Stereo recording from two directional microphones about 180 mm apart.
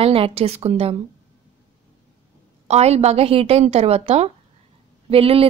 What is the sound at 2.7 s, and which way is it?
Speech, 35° right (ahead or behind).